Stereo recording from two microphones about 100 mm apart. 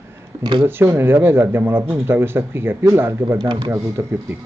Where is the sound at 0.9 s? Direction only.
25° right (ahead or behind).